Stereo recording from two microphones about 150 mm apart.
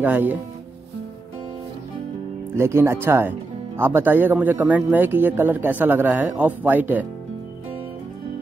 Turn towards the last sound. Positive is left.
turn(degrees=-10)  # may be behind; listen again after turning